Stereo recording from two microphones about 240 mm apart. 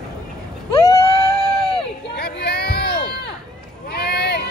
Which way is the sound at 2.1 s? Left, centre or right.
Left.